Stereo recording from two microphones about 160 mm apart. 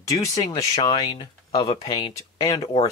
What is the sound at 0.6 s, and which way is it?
Speech, 30° left (ahead or behind).